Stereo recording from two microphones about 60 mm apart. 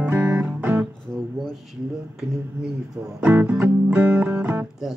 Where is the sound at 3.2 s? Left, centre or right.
Right.